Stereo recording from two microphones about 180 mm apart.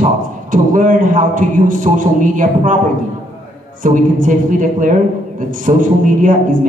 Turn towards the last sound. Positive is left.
turn(degrees=-45)  # may be behind; listen again after turning